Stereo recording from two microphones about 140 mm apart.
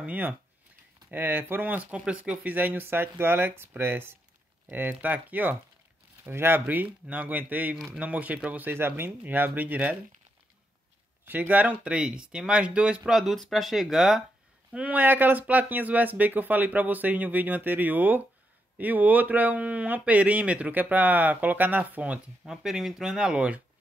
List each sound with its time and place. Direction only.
0.0 s speech: 10° right (ahead or behind)
11.2 s speech: 10° right (ahead or behind)